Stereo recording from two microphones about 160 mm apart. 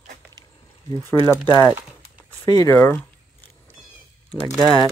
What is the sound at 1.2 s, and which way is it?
Speech, 15° left (ahead or behind).